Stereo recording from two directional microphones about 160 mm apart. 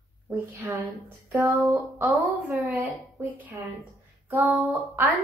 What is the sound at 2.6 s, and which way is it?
A woman's voice, 15° right (ahead or behind).